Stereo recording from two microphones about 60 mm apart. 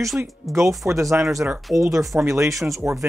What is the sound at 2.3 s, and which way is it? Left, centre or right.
Speech, right.